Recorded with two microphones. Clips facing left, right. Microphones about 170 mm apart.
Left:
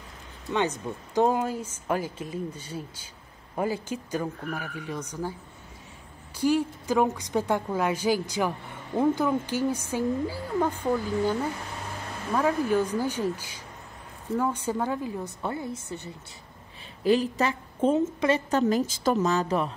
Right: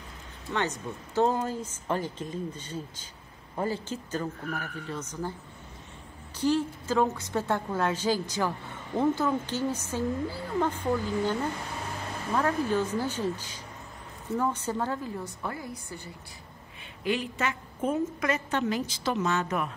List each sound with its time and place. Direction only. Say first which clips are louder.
0.5 s a woman's voice: left 4 dB; 15° left (ahead or behind)
6.3 s a woman's voice: left 2 dB; 10° left (ahead or behind)
12.4 s a woman's voice: left 3 dB; 10° left (ahead or behind)
15.4 s a woman's voice: left 4 dB; 25° left (ahead or behind)
17.0 s a woman's voice: left 6 dB; 35° left (ahead or behind)